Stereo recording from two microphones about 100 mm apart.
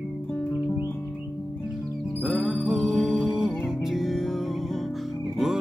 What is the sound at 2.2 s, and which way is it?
Music, 10° right (ahead or behind).